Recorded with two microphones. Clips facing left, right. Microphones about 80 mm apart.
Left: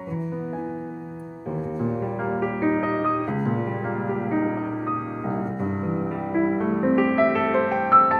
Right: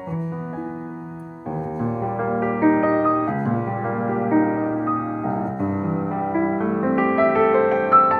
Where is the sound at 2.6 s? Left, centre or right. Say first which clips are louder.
Right 6 dB; right.